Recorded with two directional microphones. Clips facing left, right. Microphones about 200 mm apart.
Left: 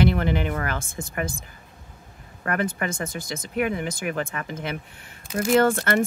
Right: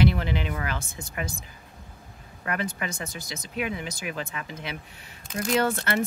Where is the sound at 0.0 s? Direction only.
50° left (ahead or behind).